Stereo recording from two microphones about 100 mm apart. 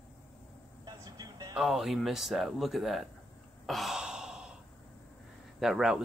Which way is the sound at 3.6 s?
Centre (ahead or behind).